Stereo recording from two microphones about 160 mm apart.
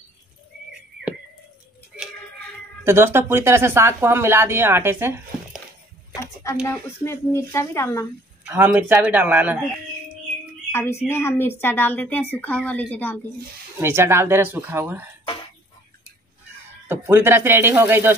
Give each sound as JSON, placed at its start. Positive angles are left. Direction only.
{"t": 2.8, "sound": "speech", "side_deg": -15}
{"t": 6.6, "sound": "a woman's voice", "side_deg": 15}
{"t": 8.5, "sound": "speech", "side_deg": -10}
{"t": 10.7, "sound": "a woman's voice", "side_deg": 15}
{"t": 13.7, "sound": "speech", "side_deg": -15}
{"t": 16.8, "sound": "speech", "side_deg": -15}